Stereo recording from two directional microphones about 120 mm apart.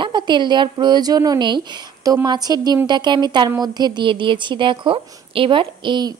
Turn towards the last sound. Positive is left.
turn(degrees=-40)  # may be behind; listen again after turning